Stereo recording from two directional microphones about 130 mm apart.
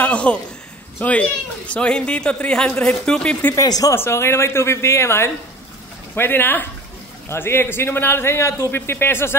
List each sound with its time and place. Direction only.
0.0 s a man's voice: 10° left (ahead or behind)
3.5 s a man's voice: 30° left (ahead or behind)